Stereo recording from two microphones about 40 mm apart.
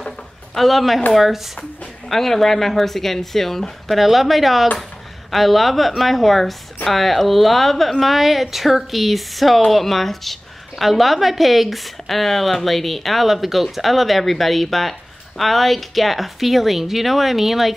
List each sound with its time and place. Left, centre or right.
0.6 s a woman's voice: centre
2.0 s a woman's voice: centre